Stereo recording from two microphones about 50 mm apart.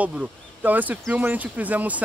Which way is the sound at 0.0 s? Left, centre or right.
Right.